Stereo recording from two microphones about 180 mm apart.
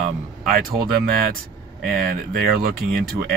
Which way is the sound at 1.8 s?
55° right (ahead or behind).